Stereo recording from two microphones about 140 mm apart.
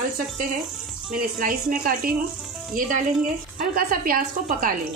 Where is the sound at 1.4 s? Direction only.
80° right.